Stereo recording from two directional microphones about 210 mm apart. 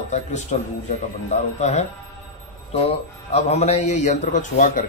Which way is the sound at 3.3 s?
30° left (ahead or behind).